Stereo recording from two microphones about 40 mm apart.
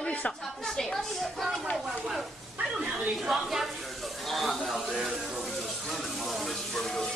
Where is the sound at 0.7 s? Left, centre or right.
Centre.